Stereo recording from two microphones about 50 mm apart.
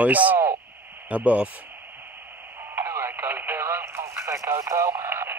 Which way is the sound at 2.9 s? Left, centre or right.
Right.